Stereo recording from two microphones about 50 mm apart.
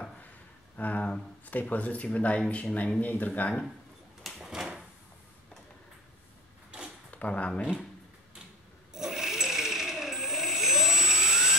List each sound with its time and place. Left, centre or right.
0.7 s speech: left
4.4 s door: centre
7.1 s speech: left
8.9 s a sound: centre